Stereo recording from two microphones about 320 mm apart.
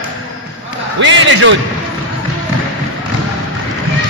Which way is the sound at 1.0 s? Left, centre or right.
Right.